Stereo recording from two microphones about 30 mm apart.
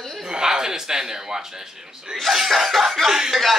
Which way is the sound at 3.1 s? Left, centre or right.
Centre.